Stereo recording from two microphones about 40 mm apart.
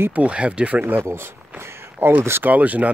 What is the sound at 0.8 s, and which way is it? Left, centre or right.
Speech, right.